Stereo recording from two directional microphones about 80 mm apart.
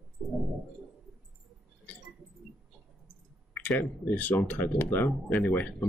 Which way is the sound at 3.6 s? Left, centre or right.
Centre.